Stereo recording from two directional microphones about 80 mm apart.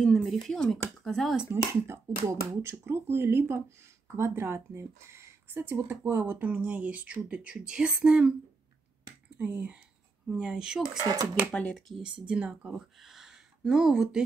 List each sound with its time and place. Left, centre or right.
0.0 s speech: centre
1.5 s speech: right; by 8.4 s centre
9.4 s speech: centre
11.0 s speech: right
11.5 s speech: centre
12.0 s speech: centre